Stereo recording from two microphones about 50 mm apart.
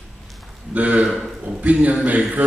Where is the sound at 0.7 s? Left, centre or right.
Right.